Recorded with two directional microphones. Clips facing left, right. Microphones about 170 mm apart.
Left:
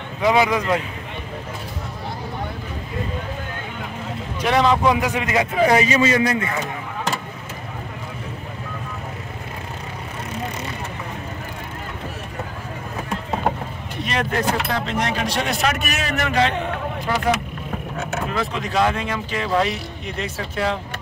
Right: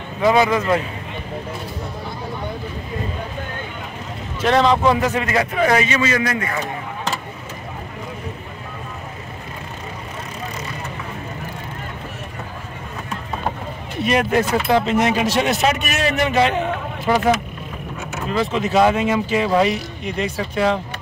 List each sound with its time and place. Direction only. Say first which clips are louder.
0.2 s speech: right 2 dB; 10° left (ahead or behind)
4.4 s a man's voice: right 2 dB; 10° left (ahead or behind)
14.0 s a man's voice: right 5 dB; 10° right (ahead or behind)
18.5 s a man's voice: right 6 dB; 5° right (ahead or behind)